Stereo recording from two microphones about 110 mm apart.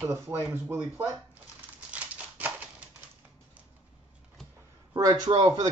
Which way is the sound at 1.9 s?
10° right (ahead or behind).